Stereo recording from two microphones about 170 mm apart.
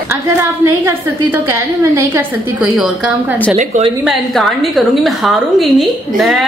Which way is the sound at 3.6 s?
35° right (ahead or behind).